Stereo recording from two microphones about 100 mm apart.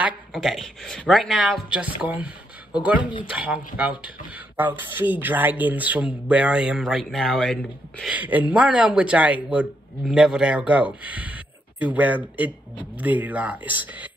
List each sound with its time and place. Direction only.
0.3 s speech: centre (ahead or behind)
3.0 s speech: 50° left (ahead or behind)
3.3 s speech: 10° right (ahead or behind); by 7.6 s 10° left (ahead or behind)
8.0 s speech: 15° right (ahead or behind)